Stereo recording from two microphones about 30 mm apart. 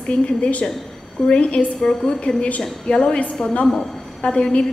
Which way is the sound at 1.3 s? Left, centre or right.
Left.